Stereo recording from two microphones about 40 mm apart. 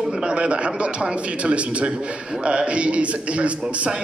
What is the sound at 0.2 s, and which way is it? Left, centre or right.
Speech, right.